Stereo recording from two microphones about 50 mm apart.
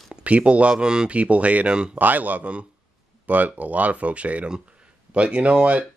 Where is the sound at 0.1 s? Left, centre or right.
Right.